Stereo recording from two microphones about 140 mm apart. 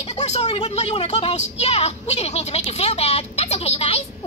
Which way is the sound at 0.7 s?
45° left (ahead or behind).